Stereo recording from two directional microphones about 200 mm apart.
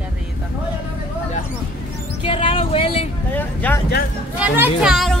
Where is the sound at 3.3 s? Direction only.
10° left (ahead or behind).